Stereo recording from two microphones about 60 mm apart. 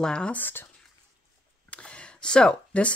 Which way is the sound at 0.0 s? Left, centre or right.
Centre.